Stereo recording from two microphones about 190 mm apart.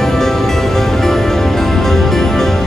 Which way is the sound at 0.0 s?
Centre (ahead or behind).